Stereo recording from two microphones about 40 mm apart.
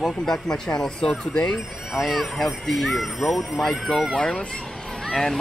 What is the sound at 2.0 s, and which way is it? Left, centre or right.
Speech, centre.